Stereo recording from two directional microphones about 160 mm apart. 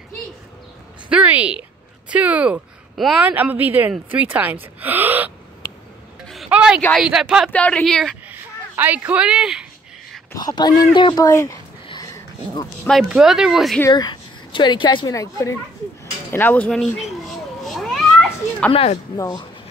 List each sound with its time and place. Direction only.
1.0 s speech: 10° right (ahead or behind)
6.2 s a sound: centre (ahead or behind)
7.0 s speech: 5° right (ahead or behind)
7.5 s speech: 10° left (ahead or behind)
8.3 s speech: 10° right (ahead or behind)
10.3 s speech: 25° left (ahead or behind)
11.0 s a sound: 25° left (ahead or behind)
12.8 s speech: centre (ahead or behind)
13.7 s a woman's voice: 25° left (ahead or behind); by 17.1 s 5° left (ahead or behind)
17.6 s cat: centre (ahead or behind)
18.7 s speech: 35° left (ahead or behind)
19.1 s speech: 20° left (ahead or behind)